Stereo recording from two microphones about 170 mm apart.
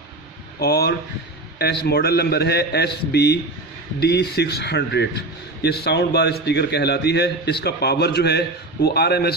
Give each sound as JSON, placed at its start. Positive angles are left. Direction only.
{"t": 0.6, "sound": "a man's voice", "side_deg": 70}